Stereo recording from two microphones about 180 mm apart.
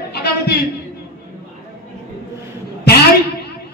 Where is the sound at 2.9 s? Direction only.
65° left (ahead or behind).